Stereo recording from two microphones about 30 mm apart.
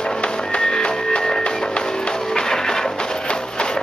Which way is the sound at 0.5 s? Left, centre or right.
Left.